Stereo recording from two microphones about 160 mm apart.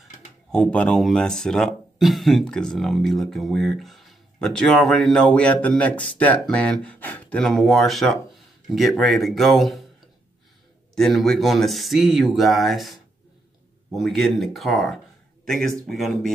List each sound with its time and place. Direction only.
0.5 s speech: 5° left (ahead or behind)
11.0 s speech: centre (ahead or behind)